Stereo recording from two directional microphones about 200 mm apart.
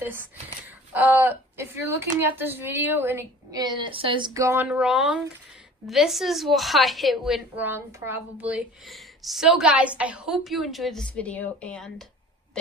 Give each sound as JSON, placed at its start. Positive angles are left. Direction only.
{"t": 0.0, "sound": "a woman's voice", "side_deg": -10}
{"t": 4.6, "sound": "a woman's voice", "side_deg": -5}